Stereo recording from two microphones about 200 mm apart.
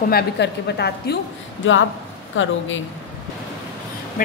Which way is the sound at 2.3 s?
70° left (ahead or behind).